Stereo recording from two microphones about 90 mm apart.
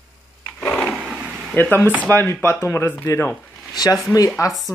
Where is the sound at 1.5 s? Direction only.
20° left (ahead or behind).